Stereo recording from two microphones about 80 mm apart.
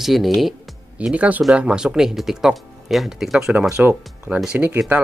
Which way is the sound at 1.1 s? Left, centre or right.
Centre.